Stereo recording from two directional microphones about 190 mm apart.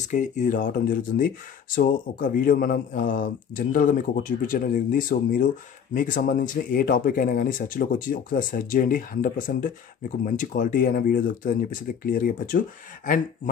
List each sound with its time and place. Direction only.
0.1 s speech: 40° left (ahead or behind)